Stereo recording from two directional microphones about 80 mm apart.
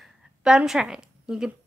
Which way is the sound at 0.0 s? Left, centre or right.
Centre.